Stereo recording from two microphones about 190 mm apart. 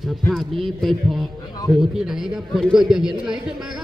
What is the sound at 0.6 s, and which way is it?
A man's voice, centre (ahead or behind).